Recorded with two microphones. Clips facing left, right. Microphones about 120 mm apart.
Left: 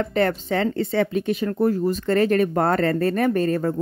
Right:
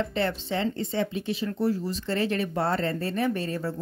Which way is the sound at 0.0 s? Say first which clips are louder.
Left 6 dB; 55° left (ahead or behind).